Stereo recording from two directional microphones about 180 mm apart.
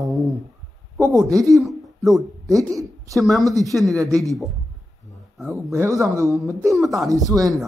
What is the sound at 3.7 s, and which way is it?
Speech, centre (ahead or behind).